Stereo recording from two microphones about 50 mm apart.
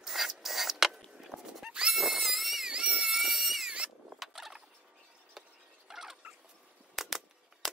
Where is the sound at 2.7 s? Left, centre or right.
Centre.